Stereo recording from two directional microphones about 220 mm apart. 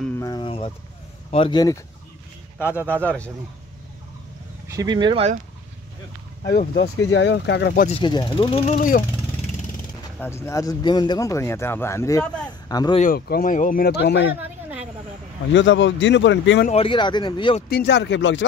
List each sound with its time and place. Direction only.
0.2 s a sound: 20° left (ahead or behind)
1.3 s speech: 20° left (ahead or behind)
2.9 s speech: 5° left (ahead or behind)
4.7 s speech: 20° right (ahead or behind)
6.4 s speech: 45° left (ahead or behind)
7.1 s speech: 55° left (ahead or behind)
8.0 s speech: 20° left (ahead or behind)
10.1 s speech: 10° left (ahead or behind)
13.0 s speech: 40° left (ahead or behind)
15.5 s speech: 55° left (ahead or behind)
16.6 s speech: 25° left (ahead or behind)
17.6 s speech: 50° left (ahead or behind)